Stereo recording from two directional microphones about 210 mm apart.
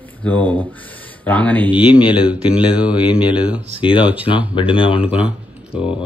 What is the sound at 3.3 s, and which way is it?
Speech, 5° right (ahead or behind).